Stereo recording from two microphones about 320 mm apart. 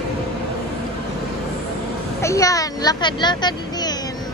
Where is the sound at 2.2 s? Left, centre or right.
Centre.